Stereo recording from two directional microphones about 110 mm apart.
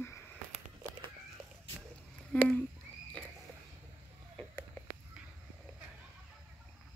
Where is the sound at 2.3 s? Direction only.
10° left (ahead or behind).